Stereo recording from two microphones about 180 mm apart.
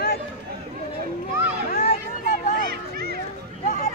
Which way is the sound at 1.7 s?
55° left (ahead or behind).